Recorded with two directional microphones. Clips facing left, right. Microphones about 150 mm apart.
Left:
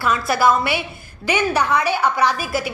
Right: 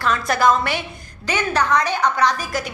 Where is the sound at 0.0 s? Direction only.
5° left (ahead or behind).